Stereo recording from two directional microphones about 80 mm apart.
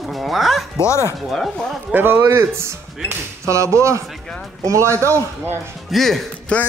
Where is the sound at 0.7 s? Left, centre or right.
Left.